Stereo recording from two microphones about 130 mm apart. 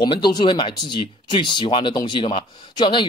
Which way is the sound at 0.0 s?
35° left (ahead or behind).